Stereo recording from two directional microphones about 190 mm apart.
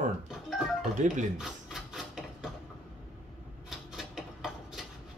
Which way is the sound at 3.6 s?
Centre (ahead or behind).